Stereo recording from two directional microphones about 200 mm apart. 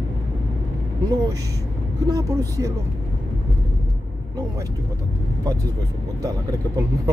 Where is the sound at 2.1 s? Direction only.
15° right (ahead or behind).